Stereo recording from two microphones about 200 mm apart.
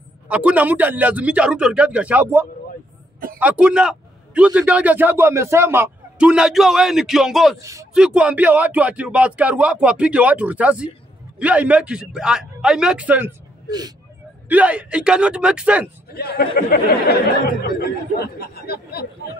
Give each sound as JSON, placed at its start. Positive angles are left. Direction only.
{"t": 0.3, "sound": "a man's voice", "side_deg": -5}
{"t": 13.7, "sound": "speech", "side_deg": -20}
{"t": 14.5, "sound": "a man's voice", "side_deg": -5}
{"t": 16.1, "sound": "speech", "side_deg": 50}